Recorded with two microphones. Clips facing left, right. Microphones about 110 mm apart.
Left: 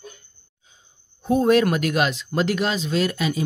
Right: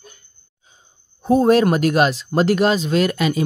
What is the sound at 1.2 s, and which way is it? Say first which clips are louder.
Speech: right 3 dB; 40° right (ahead or behind).